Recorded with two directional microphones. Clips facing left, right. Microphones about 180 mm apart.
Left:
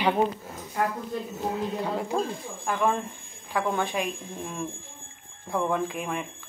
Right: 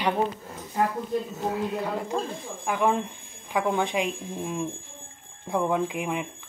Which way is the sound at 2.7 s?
15° right (ahead or behind).